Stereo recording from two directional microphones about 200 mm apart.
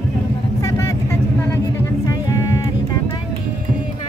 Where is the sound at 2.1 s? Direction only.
15° left (ahead or behind).